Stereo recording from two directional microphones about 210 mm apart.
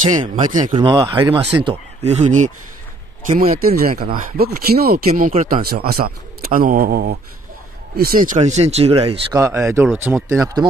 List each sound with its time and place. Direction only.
0.5 s speech: 40° right (ahead or behind)
0.7 s speech: 20° right (ahead or behind)
9.3 s speech: 15° right (ahead or behind)
9.6 s speech: 5° right (ahead or behind)
10.2 s speech: 15° right (ahead or behind)